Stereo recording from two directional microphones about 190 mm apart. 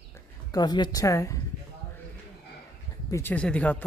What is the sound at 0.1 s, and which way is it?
Speech, 20° left (ahead or behind).